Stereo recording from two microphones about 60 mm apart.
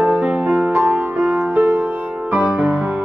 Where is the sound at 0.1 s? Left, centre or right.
Centre.